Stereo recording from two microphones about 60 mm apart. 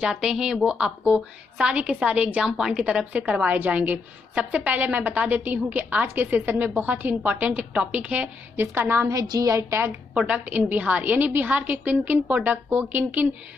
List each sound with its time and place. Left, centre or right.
0.0 s a woman's voice: centre
2.4 s a woman's voice: centre
8.5 s a woman's voice: right
9.0 s a woman's voice: right
9.6 s a woman's voice: right
10.1 s a woman's voice: centre